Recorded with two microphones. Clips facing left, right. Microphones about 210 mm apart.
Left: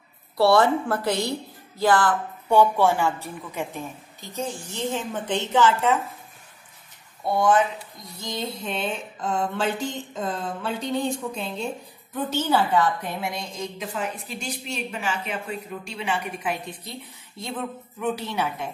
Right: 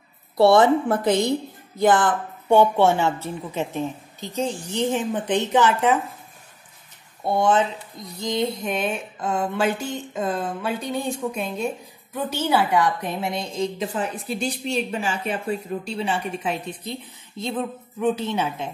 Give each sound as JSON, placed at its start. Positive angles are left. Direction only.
{"t": 0.4, "sound": "a woman's voice", "side_deg": -20}
{"t": 7.2, "sound": "a woman's voice", "side_deg": -25}
{"t": 8.2, "sound": "a sound", "side_deg": -15}
{"t": 12.3, "sound": "a woman's voice", "side_deg": -10}
{"t": 18.0, "sound": "a woman's voice", "side_deg": -20}